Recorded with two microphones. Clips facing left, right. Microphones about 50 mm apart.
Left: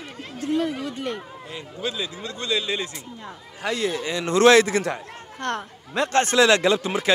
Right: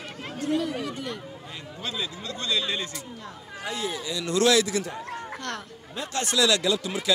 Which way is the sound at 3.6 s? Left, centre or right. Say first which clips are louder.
Left 6 dB; left.